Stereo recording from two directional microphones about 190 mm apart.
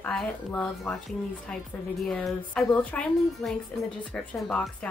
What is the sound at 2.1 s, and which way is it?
Speech, 5° left (ahead or behind).